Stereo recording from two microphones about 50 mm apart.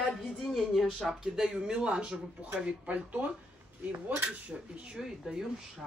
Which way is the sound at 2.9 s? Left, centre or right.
Right.